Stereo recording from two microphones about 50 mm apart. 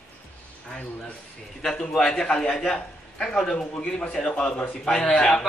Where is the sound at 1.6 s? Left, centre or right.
Centre.